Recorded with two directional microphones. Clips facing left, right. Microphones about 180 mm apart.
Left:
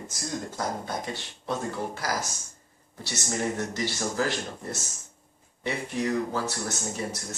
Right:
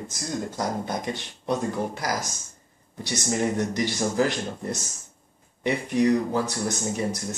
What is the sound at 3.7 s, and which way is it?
Speech, 15° right (ahead or behind).